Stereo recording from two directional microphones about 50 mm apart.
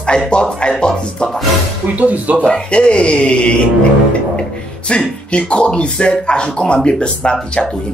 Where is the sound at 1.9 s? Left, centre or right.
Right.